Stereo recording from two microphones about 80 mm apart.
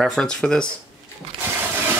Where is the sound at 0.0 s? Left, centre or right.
Centre.